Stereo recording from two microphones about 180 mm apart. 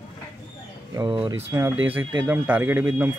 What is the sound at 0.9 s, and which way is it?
Speech, 30° right (ahead or behind).